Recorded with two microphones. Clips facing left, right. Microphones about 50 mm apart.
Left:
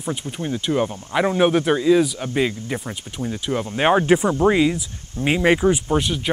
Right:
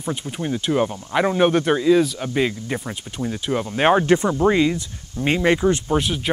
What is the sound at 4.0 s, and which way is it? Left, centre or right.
Speech, centre.